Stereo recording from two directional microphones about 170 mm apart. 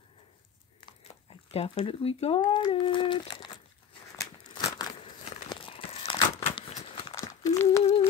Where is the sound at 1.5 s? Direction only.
35° left (ahead or behind).